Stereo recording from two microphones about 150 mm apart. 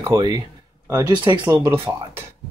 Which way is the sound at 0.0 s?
20° right (ahead or behind).